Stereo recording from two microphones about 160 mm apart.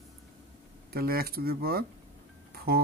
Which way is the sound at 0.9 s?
70° right (ahead or behind).